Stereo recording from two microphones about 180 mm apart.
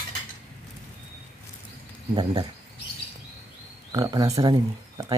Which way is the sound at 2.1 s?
20° right (ahead or behind).